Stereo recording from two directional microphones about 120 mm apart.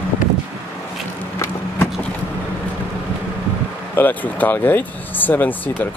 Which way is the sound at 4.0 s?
15° left (ahead or behind).